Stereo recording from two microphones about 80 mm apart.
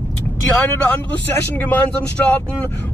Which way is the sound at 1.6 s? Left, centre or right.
Left.